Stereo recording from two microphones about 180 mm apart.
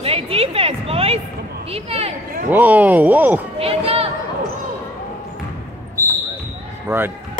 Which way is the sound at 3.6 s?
35° right (ahead or behind).